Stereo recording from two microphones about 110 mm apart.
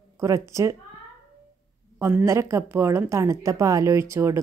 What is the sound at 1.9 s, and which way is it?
A woman's voice, 20° right (ahead or behind).